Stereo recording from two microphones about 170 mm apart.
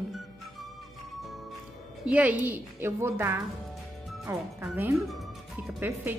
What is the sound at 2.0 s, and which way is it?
A woman's voice, 10° right (ahead or behind).